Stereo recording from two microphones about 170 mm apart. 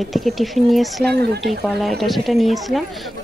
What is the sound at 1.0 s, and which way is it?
Speech, 75° right (ahead or behind).